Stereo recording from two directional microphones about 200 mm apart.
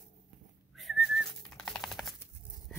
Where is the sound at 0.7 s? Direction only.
Centre (ahead or behind).